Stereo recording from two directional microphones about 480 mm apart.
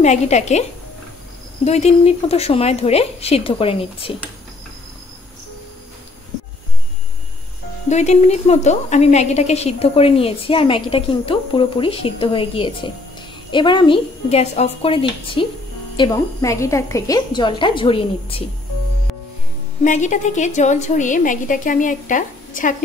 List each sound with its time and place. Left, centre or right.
0.0 s a woman's voice: centre
7.9 s a woman's voice: centre
19.8 s a woman's voice: centre